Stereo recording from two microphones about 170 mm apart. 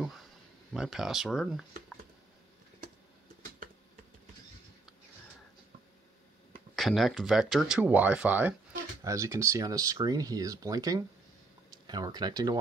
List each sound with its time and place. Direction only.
0.0 s a sound: centre (ahead or behind)
0.7 s speech: centre (ahead or behind)
6.7 s speech: centre (ahead or behind); by 12.5 s 25° right (ahead or behind)